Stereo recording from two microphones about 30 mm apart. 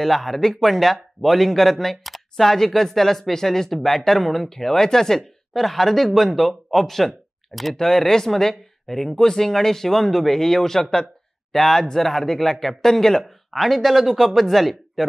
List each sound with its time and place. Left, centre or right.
0.0 s speech: centre
7.7 s speech: centre